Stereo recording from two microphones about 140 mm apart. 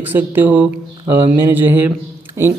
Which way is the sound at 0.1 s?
15° right (ahead or behind).